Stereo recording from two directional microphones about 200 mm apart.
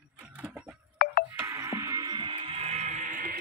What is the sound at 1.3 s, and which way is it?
Music, 10° right (ahead or behind).